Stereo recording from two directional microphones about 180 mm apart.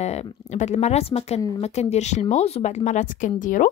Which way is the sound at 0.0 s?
35° left (ahead or behind).